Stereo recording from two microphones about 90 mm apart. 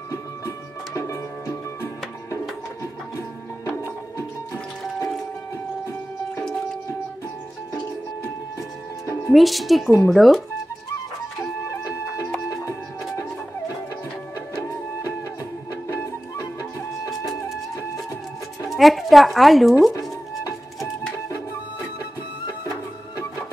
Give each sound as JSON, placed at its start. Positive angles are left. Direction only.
{"t": 0.1, "sound": "music", "side_deg": 35}
{"t": 3.7, "sound": "music", "side_deg": 30}
{"t": 8.2, "sound": "music", "side_deg": 35}
{"t": 9.3, "sound": "speech", "side_deg": 0}
{"t": 11.6, "sound": "printer", "side_deg": 35}
{"t": 14.6, "sound": "music", "side_deg": 35}
{"t": 18.7, "sound": "speech", "side_deg": 0}